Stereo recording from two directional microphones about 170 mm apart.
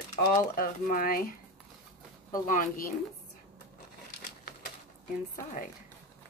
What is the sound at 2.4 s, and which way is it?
Speech, 50° left (ahead or behind).